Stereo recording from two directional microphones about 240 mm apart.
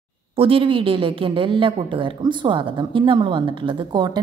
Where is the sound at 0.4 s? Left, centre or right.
Right.